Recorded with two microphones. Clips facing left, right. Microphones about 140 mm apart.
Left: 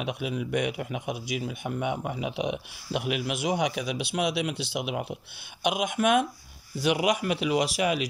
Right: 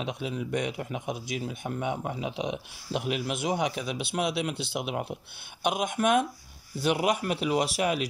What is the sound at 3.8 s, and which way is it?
Speech, 35° right (ahead or behind).